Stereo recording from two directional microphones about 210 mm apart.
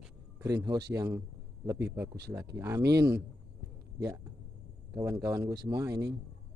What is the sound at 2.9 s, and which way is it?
Speech, 15° right (ahead or behind).